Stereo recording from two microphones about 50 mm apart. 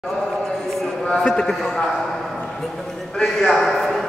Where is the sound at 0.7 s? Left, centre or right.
Centre.